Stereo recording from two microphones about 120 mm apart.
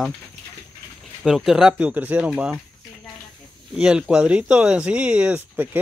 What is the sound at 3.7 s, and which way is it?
Speech, 5° right (ahead or behind).